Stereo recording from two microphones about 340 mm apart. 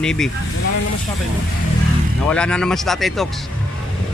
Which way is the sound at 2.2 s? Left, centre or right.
Centre.